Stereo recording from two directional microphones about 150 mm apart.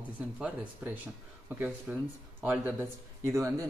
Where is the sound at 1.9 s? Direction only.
10° right (ahead or behind).